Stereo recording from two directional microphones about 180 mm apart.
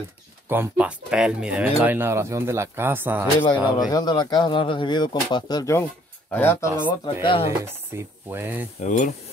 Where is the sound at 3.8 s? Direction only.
20° left (ahead or behind).